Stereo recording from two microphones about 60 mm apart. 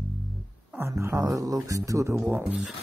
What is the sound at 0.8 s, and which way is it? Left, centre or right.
Speech, right.